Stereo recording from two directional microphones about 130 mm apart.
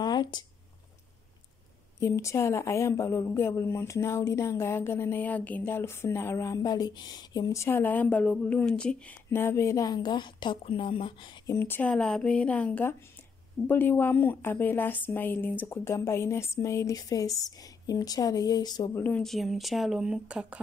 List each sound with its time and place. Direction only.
0.0 s a sound: 35° left (ahead or behind)
2.0 s speech: 20° left (ahead or behind); by 11.4 s 40° left (ahead or behind)
11.4 s a woman's voice: 15° left (ahead or behind)
18.9 s a woman's voice: 15° left (ahead or behind)
19.2 s speech: centre (ahead or behind)